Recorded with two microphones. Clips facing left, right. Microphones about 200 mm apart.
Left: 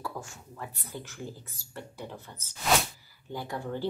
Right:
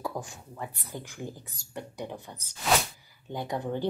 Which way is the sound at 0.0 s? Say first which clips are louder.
Right 4 dB; 15° right (ahead or behind).